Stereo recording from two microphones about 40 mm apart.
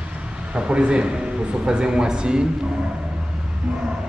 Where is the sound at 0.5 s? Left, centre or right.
Right.